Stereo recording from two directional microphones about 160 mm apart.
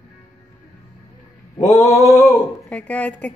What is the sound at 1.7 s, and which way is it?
Speech, 20° left (ahead or behind).